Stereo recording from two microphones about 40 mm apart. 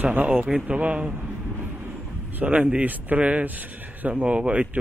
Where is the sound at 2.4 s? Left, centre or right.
Right.